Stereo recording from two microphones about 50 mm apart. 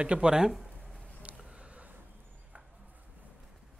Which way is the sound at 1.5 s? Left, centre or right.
Right.